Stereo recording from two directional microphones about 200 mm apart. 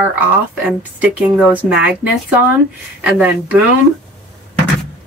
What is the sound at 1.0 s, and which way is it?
Speech, 5° right (ahead or behind).